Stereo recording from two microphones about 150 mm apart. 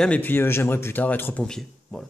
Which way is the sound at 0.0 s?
10° left (ahead or behind).